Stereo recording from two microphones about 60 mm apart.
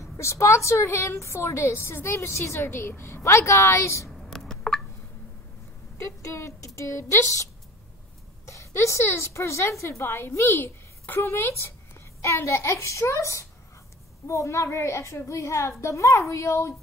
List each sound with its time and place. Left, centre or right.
0.0 s a woman's voice: left
4.3 s a sound: centre
5.9 s speech: left
8.5 s a woman's voice: left